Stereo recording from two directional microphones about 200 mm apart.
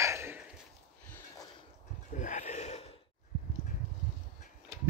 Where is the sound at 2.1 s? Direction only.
40° left (ahead or behind).